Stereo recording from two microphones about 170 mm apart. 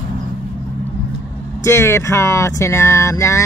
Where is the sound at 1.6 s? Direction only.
15° left (ahead or behind).